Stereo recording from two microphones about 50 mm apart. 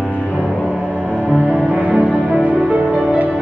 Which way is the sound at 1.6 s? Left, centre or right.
Right.